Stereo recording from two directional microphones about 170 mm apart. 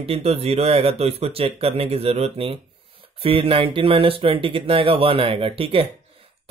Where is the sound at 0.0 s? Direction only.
35° right (ahead or behind).